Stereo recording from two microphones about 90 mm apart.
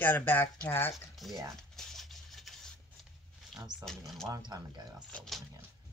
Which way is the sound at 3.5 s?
5° right (ahead or behind).